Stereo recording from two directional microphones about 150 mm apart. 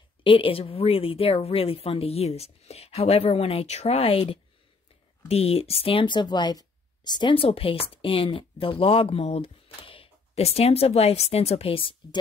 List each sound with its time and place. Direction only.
0.2 s speech: 35° left (ahead or behind)